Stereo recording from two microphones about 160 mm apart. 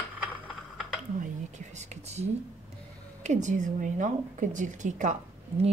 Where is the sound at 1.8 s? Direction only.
45° right (ahead or behind).